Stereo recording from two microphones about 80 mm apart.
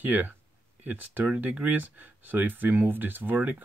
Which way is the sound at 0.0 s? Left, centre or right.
Right.